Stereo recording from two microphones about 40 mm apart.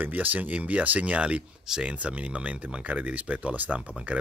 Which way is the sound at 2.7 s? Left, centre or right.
Right.